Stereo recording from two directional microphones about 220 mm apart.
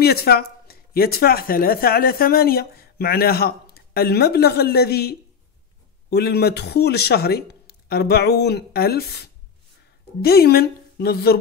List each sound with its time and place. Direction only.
0.0 s speech: 45° left (ahead or behind)